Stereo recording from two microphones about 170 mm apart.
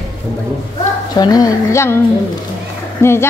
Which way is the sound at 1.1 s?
25° left (ahead or behind).